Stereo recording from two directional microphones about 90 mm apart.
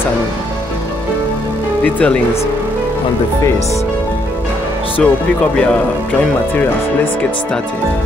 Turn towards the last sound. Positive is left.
turn(degrees=10)  # may be behind; listen again after turning